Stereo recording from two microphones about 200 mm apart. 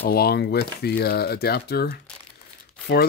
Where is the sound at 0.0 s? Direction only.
50° left (ahead or behind).